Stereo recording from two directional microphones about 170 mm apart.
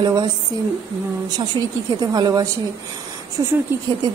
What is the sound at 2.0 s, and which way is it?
A woman's voice, 25° right (ahead or behind).